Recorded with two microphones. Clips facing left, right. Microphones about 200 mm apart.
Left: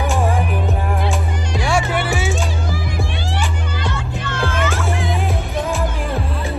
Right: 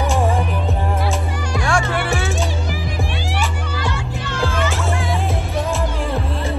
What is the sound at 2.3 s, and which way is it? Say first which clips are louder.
Music: even; 15° right (ahead or behind).